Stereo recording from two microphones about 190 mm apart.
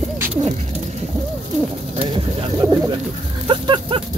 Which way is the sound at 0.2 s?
5° right (ahead or behind).